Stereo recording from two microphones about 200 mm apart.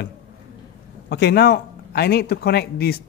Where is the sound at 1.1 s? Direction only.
55° left (ahead or behind).